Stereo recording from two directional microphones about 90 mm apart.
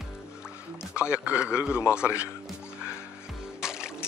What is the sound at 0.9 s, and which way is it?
A man's voice, 15° right (ahead or behind).